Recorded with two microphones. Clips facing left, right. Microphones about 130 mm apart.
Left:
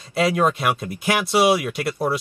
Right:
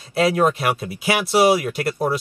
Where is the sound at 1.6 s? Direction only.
55° right (ahead or behind).